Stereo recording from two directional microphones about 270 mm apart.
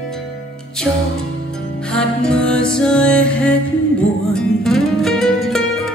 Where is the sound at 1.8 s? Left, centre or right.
Centre.